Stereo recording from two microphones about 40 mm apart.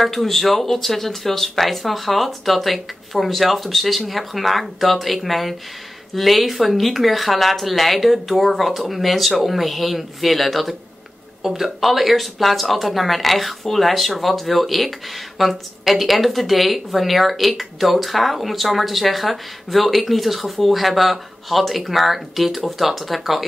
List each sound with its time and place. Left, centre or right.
0.0 s speech: centre